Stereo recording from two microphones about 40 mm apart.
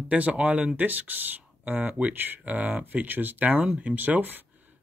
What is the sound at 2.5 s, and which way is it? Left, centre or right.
Speech, right.